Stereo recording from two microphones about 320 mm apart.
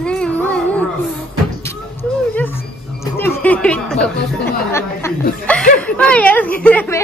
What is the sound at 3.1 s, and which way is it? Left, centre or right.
Speech, centre.